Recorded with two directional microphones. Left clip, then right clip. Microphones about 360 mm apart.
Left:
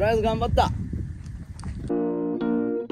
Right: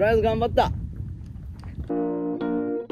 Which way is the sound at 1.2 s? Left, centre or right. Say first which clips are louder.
Left 3 dB; centre.